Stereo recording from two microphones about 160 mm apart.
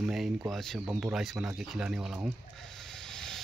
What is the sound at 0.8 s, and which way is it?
Speech, 10° right (ahead or behind).